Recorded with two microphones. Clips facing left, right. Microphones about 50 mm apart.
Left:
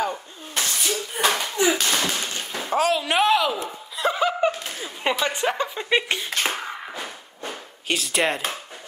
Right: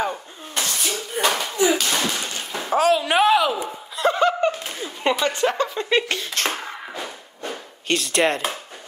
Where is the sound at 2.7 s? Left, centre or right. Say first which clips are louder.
Right 3 dB; centre.